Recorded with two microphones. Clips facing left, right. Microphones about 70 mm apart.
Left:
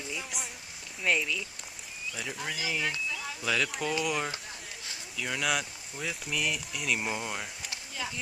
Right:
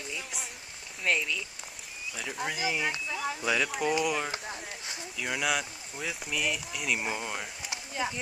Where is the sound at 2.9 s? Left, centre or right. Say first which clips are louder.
Right 3 dB; right.